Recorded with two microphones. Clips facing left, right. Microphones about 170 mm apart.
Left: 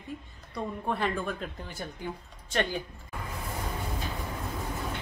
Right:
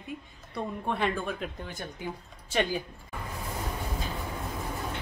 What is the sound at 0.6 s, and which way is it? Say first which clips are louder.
Speech: right 1 dB; centre (ahead or behind).